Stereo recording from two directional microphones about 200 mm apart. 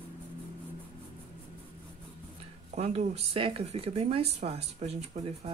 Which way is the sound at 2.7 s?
30° right (ahead or behind).